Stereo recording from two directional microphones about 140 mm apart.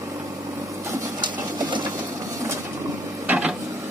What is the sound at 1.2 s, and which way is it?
Sewing machine, 35° right (ahead or behind).